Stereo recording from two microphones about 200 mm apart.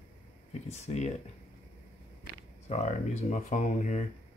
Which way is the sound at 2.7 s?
35° left (ahead or behind).